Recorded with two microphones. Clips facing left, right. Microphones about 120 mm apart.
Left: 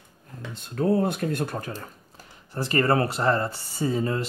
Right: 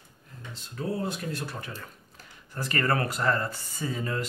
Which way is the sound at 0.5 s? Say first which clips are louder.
Left 9 dB; 55° left (ahead or behind).